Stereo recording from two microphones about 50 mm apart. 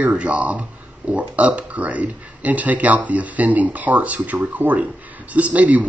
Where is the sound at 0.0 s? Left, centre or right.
Right.